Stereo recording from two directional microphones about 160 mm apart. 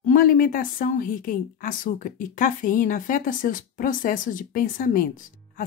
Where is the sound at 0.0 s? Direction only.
60° left (ahead or behind).